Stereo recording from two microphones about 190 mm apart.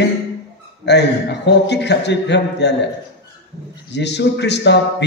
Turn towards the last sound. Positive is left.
turn(degrees=65)  # may be behind; listen again after turning